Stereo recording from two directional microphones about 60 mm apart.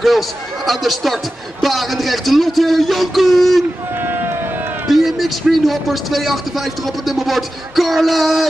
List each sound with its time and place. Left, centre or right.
0.7 s a man's voice: centre
4.0 s a sound: right
4.8 s a man's voice: centre